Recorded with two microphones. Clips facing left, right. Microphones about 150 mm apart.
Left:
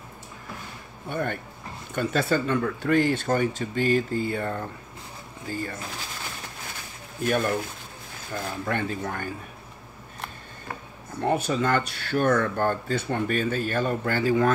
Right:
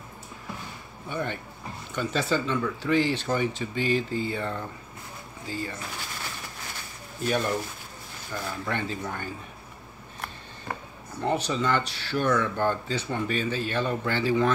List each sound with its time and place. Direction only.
1.0 s speech: 50° left (ahead or behind)
7.2 s speech: 50° left (ahead or behind)
11.1 s speech: 50° left (ahead or behind)